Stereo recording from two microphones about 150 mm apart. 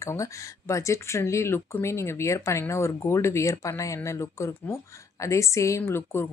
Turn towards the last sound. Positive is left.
turn(degrees=15)  # may be behind; listen again after turning